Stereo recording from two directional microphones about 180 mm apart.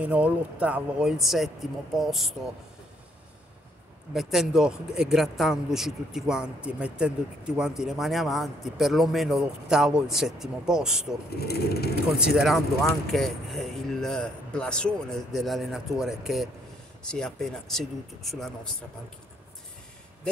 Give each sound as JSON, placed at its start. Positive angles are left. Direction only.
{"t": 0.0, "sound": "speech", "side_deg": -5}
{"t": 4.1, "sound": "speech", "side_deg": 0}
{"t": 11.3, "sound": "speech", "side_deg": 60}
{"t": 12.4, "sound": "speech", "side_deg": 0}